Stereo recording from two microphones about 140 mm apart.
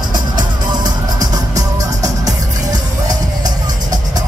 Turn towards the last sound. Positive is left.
turn(degrees=-25)  # may be behind; listen again after turning